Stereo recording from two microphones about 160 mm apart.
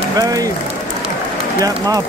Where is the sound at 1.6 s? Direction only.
25° right (ahead or behind).